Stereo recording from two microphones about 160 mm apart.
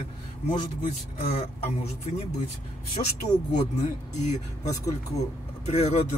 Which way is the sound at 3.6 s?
50° left (ahead or behind).